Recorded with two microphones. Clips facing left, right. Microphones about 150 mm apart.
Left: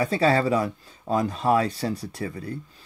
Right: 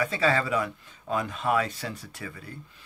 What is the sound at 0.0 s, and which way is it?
Speech, 35° left (ahead or behind).